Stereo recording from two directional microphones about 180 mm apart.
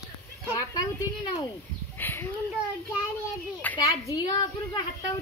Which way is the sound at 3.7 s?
20° left (ahead or behind).